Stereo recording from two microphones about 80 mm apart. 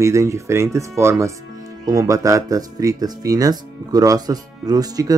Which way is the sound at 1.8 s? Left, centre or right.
Right.